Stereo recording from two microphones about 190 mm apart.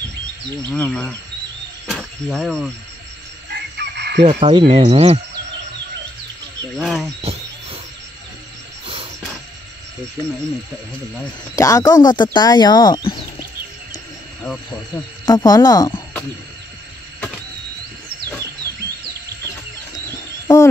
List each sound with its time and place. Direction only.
0.6 s insect: 5° left (ahead or behind)
1.9 s speech: centre (ahead or behind)
3.4 s fowl: 60° right (ahead or behind)
4.2 s frog: 30° right (ahead or behind)
6.8 s speech: centre (ahead or behind)
7.2 s a sound: 30° right (ahead or behind)
8.8 s wild animals: 30° right (ahead or behind)
11.5 s speech: 15° left (ahead or behind)
15.2 s speech: 20° left (ahead or behind)